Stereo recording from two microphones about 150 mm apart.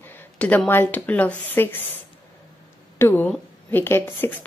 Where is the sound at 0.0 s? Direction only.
10° left (ahead or behind).